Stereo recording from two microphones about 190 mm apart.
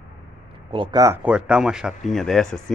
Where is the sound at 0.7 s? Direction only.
25° right (ahead or behind).